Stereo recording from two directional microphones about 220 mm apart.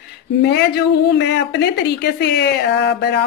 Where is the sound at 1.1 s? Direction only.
55° left (ahead or behind).